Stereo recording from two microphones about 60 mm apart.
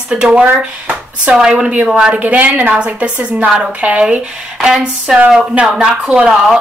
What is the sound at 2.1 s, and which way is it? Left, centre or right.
A woman's voice, right.